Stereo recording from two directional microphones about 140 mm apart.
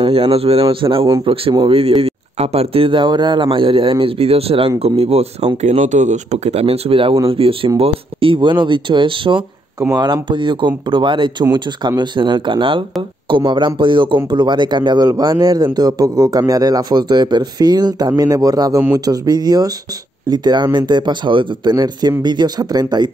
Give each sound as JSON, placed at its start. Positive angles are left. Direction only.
{"t": 0.0, "sound": "speech", "side_deg": -45}
{"t": 9.8, "sound": "a man's voice", "side_deg": -25}